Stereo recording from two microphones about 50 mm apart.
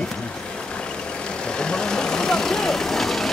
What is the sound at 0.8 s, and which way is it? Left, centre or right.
Vehicle, centre.